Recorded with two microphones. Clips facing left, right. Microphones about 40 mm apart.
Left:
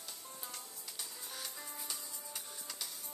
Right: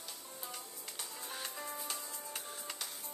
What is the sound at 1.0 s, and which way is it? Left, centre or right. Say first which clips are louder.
Music: right 3 dB; centre.